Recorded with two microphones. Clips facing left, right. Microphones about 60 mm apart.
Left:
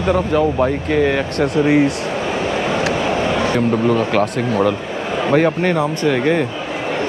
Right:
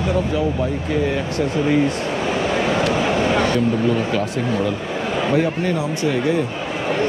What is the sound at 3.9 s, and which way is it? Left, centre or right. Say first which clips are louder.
Speech: left 4 dB; left.